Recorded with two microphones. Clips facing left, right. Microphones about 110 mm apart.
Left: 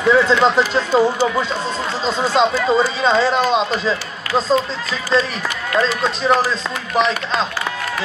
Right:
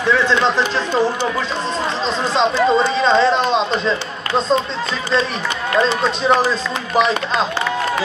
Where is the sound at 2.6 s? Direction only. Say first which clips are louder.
Right 1 dB; 5° left (ahead or behind).